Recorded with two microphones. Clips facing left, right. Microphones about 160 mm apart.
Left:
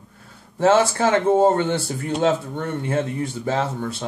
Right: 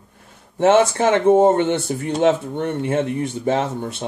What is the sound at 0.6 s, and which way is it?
Speech, 20° right (ahead or behind).